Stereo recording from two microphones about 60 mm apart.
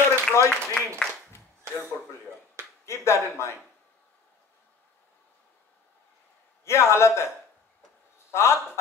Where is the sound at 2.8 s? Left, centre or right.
Left.